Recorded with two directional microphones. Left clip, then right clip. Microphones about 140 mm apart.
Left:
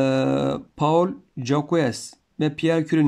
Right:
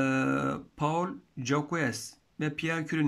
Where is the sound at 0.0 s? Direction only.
30° left (ahead or behind).